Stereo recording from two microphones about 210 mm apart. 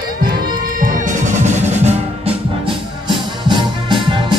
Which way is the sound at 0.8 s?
40° right (ahead or behind).